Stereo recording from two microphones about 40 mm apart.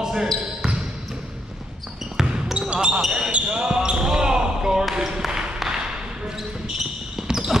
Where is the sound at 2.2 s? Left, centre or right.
Centre.